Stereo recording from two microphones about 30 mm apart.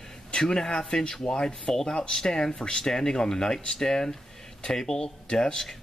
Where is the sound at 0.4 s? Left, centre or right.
Centre.